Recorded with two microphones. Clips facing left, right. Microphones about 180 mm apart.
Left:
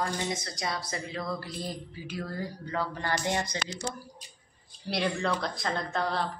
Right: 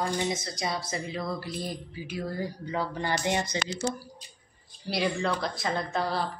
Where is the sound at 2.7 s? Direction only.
20° right (ahead or behind).